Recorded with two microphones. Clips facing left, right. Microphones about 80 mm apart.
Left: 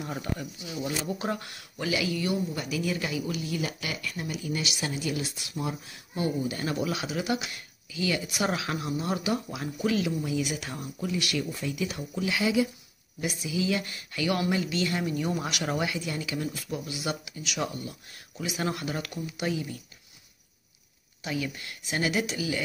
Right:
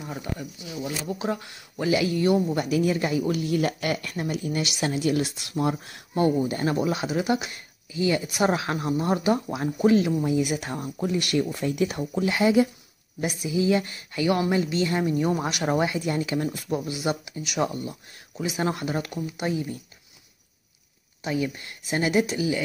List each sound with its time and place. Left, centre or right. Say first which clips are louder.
0.2 s speech: right 1 dB; centre
1.8 s speech: right 6 dB; right
5.5 s a woman's voice: right 7 dB; right
21.2 s a woman's voice: right 5 dB; right